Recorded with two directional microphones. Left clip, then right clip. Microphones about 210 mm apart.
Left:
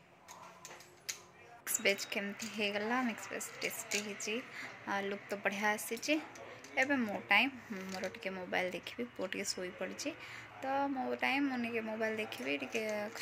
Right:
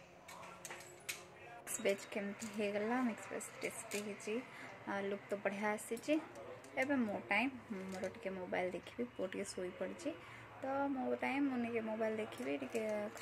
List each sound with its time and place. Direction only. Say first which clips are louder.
1.8 s speech: left 5 dB; centre (ahead or behind)